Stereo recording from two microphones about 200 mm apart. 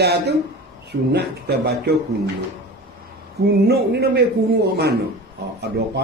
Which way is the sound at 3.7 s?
55° right (ahead or behind).